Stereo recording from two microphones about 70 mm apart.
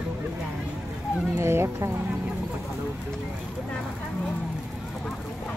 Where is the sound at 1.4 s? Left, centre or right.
Right.